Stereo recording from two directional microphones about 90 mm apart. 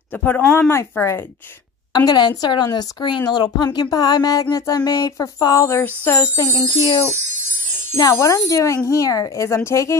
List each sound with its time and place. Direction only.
0.1 s speech: 20° left (ahead or behind)
0.6 s music: 25° left (ahead or behind)
2.0 s speech: 50° left (ahead or behind)
5.7 s music: 25° left (ahead or behind)
6.5 s music: 55° left (ahead or behind)
8.0 s speech: 40° left (ahead or behind)